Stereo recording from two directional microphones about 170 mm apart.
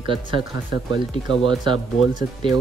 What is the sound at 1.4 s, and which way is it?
Speech, 30° right (ahead or behind).